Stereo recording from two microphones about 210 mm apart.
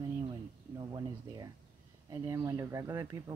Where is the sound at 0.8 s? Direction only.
20° right (ahead or behind).